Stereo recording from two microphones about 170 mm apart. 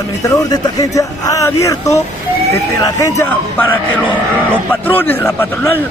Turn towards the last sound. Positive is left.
turn(degrees=15)  # may be behind; listen again after turning